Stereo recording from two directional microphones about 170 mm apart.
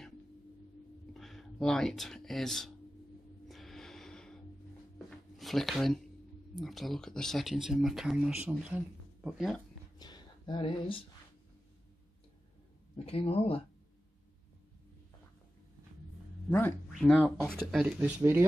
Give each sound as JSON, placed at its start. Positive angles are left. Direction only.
{"t": 1.1, "sound": "speech", "side_deg": 0}
{"t": 3.4, "sound": "music", "side_deg": 0}
{"t": 4.9, "sound": "a sound", "side_deg": 0}
{"t": 6.5, "sound": "speech", "side_deg": 0}
{"t": 9.9, "sound": "a sound", "side_deg": 25}
{"t": 12.9, "sound": "speech", "side_deg": 35}
{"t": 16.5, "sound": "speech", "side_deg": 10}